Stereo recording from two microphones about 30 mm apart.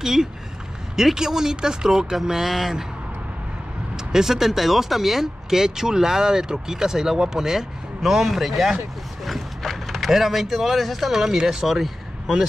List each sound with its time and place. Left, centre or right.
0.0 s speech: centre
2.4 s speech: centre
3.9 s speech: centre
8.0 s a man's voice: centre
9.2 s a sound: centre
10.1 s speech: centre
11.1 s speech: centre